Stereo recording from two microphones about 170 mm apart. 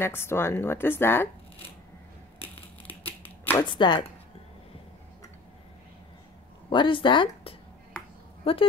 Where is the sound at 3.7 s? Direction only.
30° left (ahead or behind).